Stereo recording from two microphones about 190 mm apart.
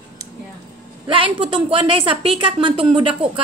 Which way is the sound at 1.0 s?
30° right (ahead or behind).